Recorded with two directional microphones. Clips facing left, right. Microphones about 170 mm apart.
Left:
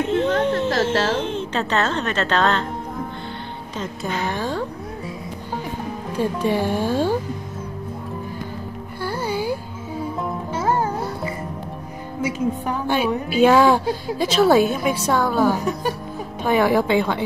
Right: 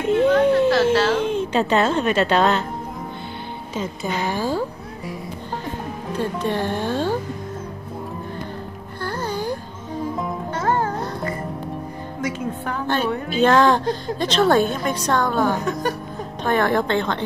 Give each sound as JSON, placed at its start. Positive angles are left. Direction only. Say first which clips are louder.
{"t": 0.1, "sound": "a sound", "louder": "right 7 dB", "side_deg": -10}
{"t": 1.2, "sound": "speech", "louder": "right 4 dB", "side_deg": -10}
{"t": 3.7, "sound": "speech", "louder": "right 1 dB", "side_deg": 0}
{"t": 6.1, "sound": "a woman's voice", "louder": "left 2 dB", "side_deg": 10}
{"t": 9.0, "sound": "music", "louder": "left 1 dB", "side_deg": 10}
{"t": 12.2, "sound": "a woman's voice", "louder": "left 4 dB", "side_deg": 10}